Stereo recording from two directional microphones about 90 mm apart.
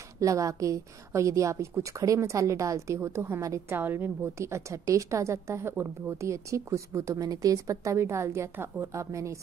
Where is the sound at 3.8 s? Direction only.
25° right (ahead or behind).